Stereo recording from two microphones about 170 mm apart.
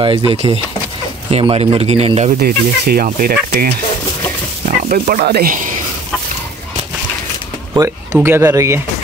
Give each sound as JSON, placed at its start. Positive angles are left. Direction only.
{"t": 0.0, "sound": "speech", "side_deg": -30}
{"t": 2.4, "sound": "speech", "side_deg": -65}
{"t": 4.8, "sound": "speech", "side_deg": -55}
{"t": 7.7, "sound": "speech", "side_deg": -20}